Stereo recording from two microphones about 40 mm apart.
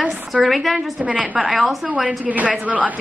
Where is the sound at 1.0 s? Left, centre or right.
Right.